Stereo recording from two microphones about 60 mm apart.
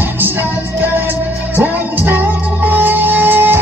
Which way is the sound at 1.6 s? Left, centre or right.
Right.